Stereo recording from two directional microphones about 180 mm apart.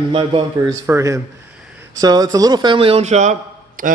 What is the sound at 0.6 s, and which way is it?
A man's voice, 15° right (ahead or behind).